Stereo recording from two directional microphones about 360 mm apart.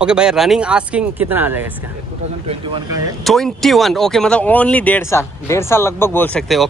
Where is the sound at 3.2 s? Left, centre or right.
Centre.